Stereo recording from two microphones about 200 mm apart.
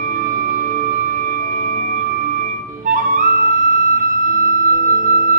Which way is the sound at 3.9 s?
40° right (ahead or behind).